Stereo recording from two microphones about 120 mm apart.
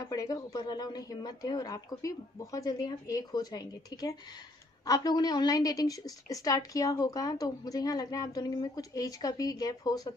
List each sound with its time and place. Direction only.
0.0 s a woman's voice: 30° left (ahead or behind)